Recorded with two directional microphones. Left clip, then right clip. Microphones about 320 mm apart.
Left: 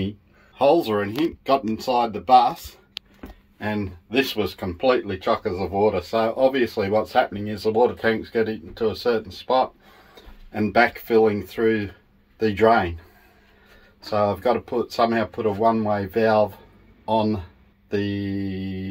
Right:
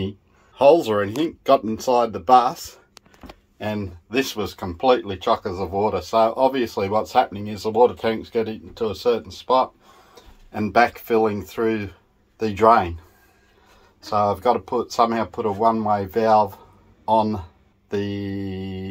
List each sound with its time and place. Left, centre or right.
0.6 s speech: centre
3.0 s a sound: left
3.5 s speech: centre
10.5 s speech: centre
14.0 s speech: centre